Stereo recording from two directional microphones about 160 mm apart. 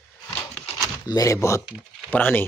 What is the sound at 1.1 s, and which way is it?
Speech, 20° left (ahead or behind).